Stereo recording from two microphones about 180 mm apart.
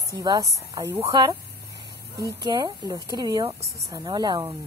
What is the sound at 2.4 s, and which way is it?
Speech, 25° right (ahead or behind).